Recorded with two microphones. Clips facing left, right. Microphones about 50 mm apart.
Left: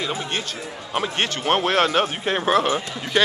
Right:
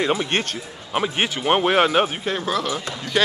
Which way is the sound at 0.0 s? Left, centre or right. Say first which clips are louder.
Right 5 dB; right.